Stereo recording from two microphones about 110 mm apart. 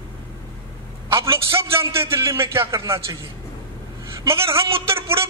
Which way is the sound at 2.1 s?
25° right (ahead or behind).